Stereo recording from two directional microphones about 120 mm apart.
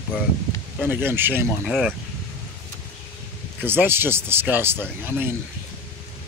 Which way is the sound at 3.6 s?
15° right (ahead or behind).